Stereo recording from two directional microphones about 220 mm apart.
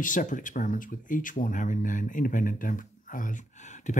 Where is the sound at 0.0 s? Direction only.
35° left (ahead or behind).